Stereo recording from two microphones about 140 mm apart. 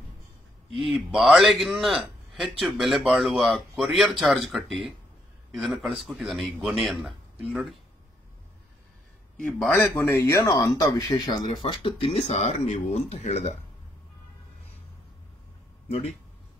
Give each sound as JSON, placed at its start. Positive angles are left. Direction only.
{"t": 0.7, "sound": "a man's voice", "side_deg": 0}
{"t": 9.4, "sound": "speech", "side_deg": 10}